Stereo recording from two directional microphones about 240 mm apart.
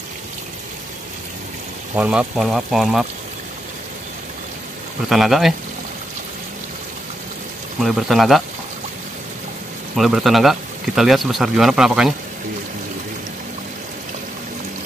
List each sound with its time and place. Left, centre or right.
2.0 s speech: centre
5.1 s speech: centre
7.8 s speech: centre
9.9 s speech: centre